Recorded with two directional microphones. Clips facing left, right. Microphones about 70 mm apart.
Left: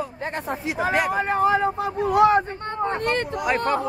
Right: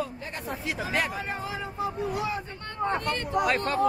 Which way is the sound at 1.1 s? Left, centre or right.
Left.